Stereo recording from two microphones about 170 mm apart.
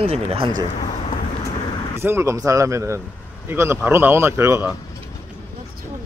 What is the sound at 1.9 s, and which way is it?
A man's voice, 15° right (ahead or behind).